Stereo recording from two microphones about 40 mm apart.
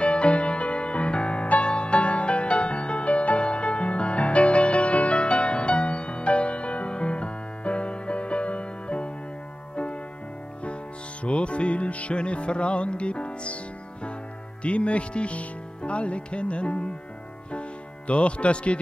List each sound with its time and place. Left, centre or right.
0.0 s music: left
11.2 s music: left
14.6 s speech: left